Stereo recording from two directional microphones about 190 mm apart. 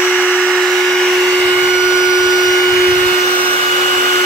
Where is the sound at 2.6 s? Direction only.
15° left (ahead or behind).